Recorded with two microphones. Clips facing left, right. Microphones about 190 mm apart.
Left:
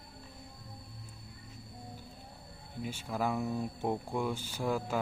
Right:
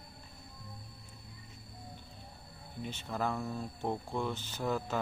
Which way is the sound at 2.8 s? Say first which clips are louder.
Left 2 dB; 10° left (ahead or behind).